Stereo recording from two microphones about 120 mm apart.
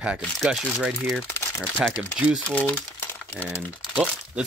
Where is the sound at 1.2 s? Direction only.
20° left (ahead or behind).